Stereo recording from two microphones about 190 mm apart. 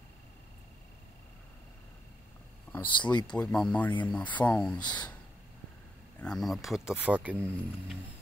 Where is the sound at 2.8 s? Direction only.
25° left (ahead or behind).